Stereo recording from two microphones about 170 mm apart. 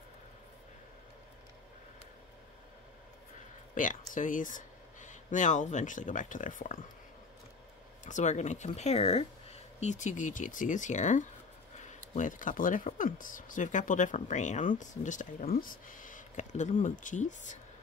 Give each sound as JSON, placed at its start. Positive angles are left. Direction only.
{"t": 3.7, "sound": "speech", "side_deg": 50}
{"t": 8.0, "sound": "speech", "side_deg": 45}